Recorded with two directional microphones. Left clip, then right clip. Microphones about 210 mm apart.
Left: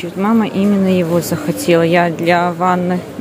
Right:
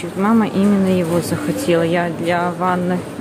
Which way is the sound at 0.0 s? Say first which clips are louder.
Left 1 dB; 10° left (ahead or behind).